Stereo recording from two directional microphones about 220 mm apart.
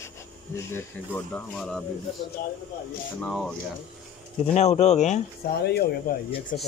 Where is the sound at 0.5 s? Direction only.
10° left (ahead or behind).